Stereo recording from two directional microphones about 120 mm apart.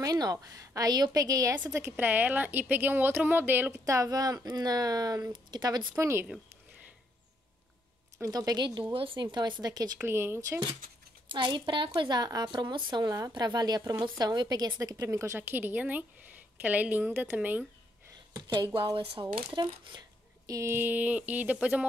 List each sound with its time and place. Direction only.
0.0 s a woman's voice: 30° right (ahead or behind)
8.2 s a woman's voice: 30° right (ahead or behind)
9.9 s a woman's voice: 20° right (ahead or behind)
11.2 s a woman's voice: 45° right (ahead or behind); by 17.6 s 15° right (ahead or behind)
18.3 s speech: 40° right (ahead or behind); by 21.8 s 10° right (ahead or behind)